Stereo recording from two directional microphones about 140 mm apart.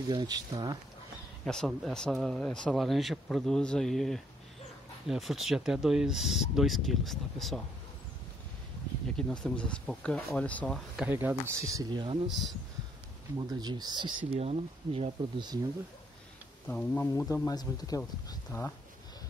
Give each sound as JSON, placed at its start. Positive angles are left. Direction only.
{"t": 0.1, "sound": "speech", "side_deg": -30}
{"t": 1.4, "sound": "speech", "side_deg": 5}
{"t": 9.1, "sound": "speech", "side_deg": 5}
{"t": 11.1, "sound": "speech", "side_deg": -15}
{"t": 12.3, "sound": "speech", "side_deg": 0}
{"t": 13.4, "sound": "speech", "side_deg": -30}
{"t": 16.6, "sound": "a man's voice", "side_deg": 15}